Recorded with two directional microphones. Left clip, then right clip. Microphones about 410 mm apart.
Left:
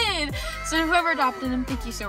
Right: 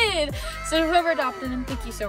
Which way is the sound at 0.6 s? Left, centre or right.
Centre.